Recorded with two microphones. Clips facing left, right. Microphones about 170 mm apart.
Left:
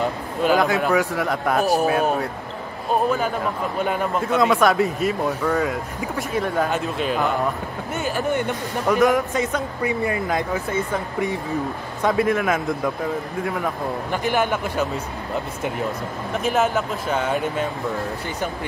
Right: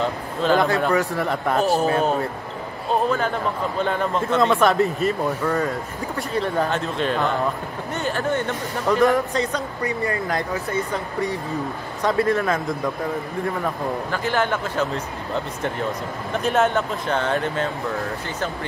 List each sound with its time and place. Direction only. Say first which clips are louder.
0.4 s speech: even; 10° left (ahead or behind)
3.8 s speech: even; 10° left (ahead or behind)
10.0 s speech: left 1 dB; 15° left (ahead or behind)
12.0 s speech: even; 5° left (ahead or behind)
14.1 s speech: left 2 dB; 15° left (ahead or behind)
16.3 s speech: right 1 dB; 5° left (ahead or behind)